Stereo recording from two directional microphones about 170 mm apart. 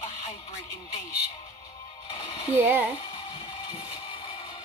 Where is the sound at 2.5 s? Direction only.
10° right (ahead or behind).